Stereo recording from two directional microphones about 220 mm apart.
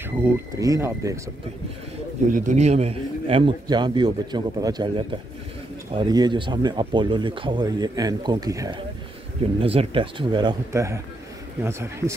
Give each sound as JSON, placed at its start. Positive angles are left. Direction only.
{"t": 0.2, "sound": "speech", "side_deg": -15}
{"t": 2.3, "sound": "speech", "side_deg": -35}